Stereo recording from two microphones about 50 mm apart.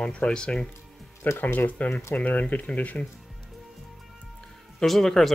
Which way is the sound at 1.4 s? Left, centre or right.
Left.